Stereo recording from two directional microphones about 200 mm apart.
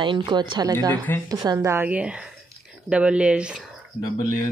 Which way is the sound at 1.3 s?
20° right (ahead or behind).